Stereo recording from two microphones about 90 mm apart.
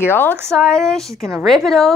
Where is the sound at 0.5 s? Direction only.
5° left (ahead or behind).